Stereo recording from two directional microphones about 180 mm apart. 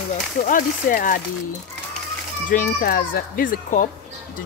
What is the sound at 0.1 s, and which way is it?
Speech, 45° left (ahead or behind).